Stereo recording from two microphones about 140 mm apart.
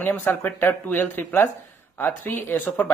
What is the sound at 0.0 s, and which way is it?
Speech, 15° left (ahead or behind).